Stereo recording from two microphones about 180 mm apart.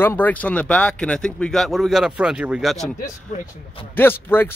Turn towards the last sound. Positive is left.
turn(degrees=10)  # may be behind; listen again after turning